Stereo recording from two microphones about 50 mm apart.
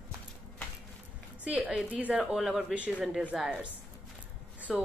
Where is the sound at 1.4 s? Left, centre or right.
Right.